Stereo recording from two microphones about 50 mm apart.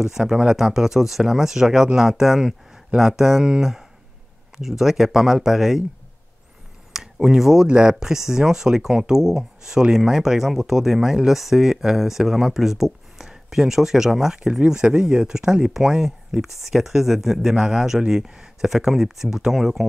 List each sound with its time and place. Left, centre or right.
0.3 s speech: centre
6.9 s a sound: centre
7.6 s speech: centre